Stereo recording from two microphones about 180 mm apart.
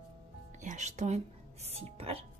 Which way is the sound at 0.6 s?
40° right (ahead or behind).